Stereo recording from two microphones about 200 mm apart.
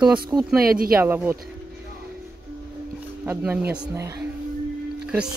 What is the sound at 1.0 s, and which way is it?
Speech, 10° right (ahead or behind).